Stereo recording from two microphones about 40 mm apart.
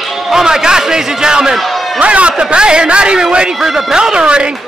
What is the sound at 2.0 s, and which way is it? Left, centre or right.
A man's voice, right.